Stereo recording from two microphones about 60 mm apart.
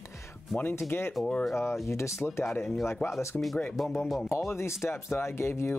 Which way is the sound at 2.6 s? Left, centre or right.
Centre.